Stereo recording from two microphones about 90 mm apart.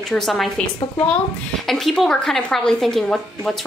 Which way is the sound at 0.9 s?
15° left (ahead or behind).